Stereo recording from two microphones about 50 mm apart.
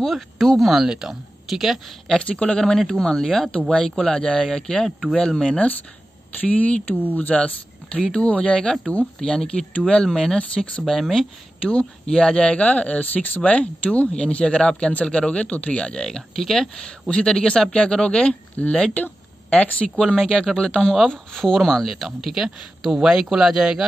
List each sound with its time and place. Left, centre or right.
0.0 s speech: centre
2.1 s speech: left
2.8 s speech: centre
3.5 s speech: centre
5.6 s speech: left
10.0 s speech: centre
10.3 s speech: left
10.9 s speech: centre
11.6 s speech: centre
20.2 s speech: centre